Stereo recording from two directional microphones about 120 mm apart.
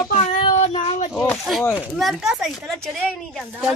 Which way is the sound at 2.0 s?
Centre (ahead or behind).